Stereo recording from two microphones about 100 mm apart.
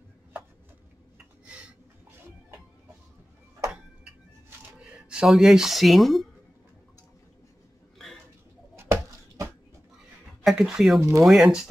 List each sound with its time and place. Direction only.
1.1 s a sound: 10° right (ahead or behind)
4.9 s speech: 5° right (ahead or behind)
8.7 s chop: 25° right (ahead or behind)
10.4 s speech: 5° right (ahead or behind)
11.0 s speech: 30° right (ahead or behind)
11.2 s speech: 5° right (ahead or behind)